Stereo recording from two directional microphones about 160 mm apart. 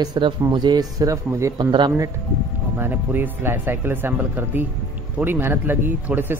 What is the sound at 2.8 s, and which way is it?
Speech, 10° right (ahead or behind).